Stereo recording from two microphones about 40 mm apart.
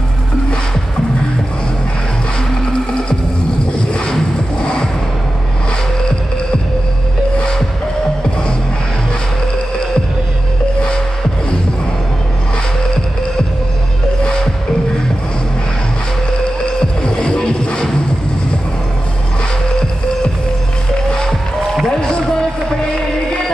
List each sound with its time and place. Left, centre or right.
3.9 s music: left
7.3 s music: left
16.6 s music: left
21.1 s music: centre